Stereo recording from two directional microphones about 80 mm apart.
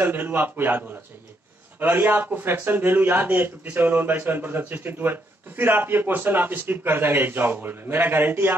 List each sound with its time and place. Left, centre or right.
0.0 s a man's voice: right